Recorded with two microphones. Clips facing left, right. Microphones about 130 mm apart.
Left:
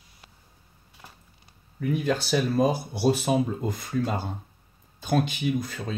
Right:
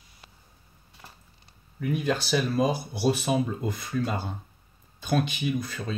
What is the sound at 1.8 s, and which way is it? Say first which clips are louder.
Speech: left 1 dB; 40° left (ahead or behind).